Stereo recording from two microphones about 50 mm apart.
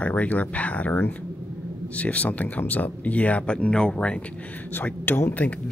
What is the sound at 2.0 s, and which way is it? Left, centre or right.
Speech, left.